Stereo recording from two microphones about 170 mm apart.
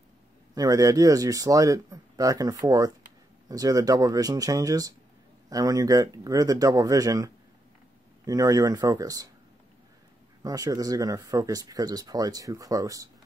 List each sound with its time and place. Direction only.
0.6 s speech: 20° right (ahead or behind)
8.3 s speech: 20° right (ahead or behind)
10.4 s speech: 20° right (ahead or behind)